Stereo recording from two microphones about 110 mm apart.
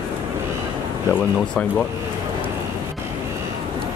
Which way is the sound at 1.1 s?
10° left (ahead or behind).